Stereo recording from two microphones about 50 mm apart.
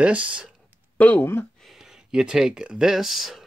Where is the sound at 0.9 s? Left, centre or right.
Left.